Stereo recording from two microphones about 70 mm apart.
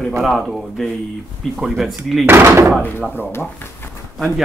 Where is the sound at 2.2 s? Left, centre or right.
Right.